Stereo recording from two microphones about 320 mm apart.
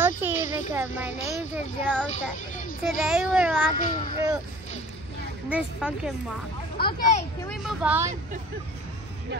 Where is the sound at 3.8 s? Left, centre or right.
Left.